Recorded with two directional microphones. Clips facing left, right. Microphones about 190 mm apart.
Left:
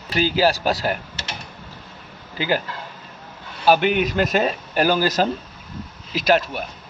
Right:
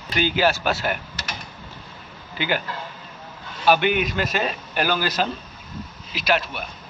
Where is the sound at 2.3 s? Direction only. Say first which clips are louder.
Left 3 dB; 40° left (ahead or behind).